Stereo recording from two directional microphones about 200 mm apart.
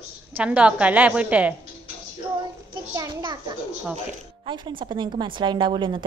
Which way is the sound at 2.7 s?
20° right (ahead or behind).